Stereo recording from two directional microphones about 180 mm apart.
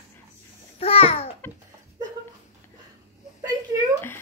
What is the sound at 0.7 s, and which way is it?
Babbling, 35° left (ahead or behind).